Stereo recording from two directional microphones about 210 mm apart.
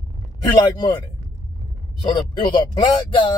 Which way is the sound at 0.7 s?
20° left (ahead or behind).